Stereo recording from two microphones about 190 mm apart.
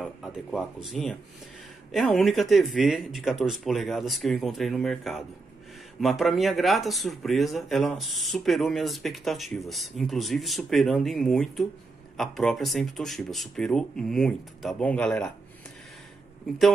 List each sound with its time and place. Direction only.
0.0 s speech: centre (ahead or behind)